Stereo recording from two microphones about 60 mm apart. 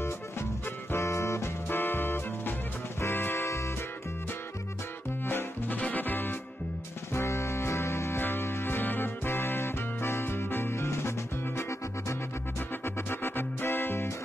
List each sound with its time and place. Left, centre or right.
0.9 s music: left
1.7 s music: left
5.2 s music: left
7.2 s music: left
12.8 s music: left